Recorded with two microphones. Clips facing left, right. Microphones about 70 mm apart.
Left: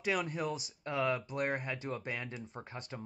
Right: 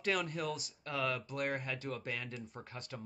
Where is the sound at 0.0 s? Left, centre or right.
Centre.